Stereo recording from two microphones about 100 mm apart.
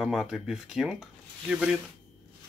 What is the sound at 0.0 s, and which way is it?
Speech, centre (ahead or behind).